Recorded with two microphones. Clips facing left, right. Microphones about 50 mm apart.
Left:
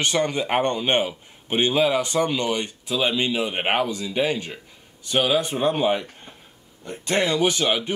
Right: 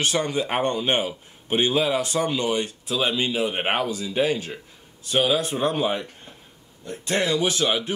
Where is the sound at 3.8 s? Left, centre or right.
Centre.